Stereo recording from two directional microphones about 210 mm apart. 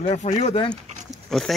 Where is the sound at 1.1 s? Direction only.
Centre (ahead or behind).